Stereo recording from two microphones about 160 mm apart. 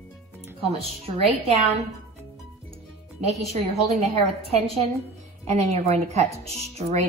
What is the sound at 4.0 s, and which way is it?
A woman's voice, 40° right (ahead or behind).